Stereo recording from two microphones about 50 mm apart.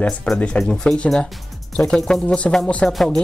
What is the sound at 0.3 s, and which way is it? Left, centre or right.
Speech, left.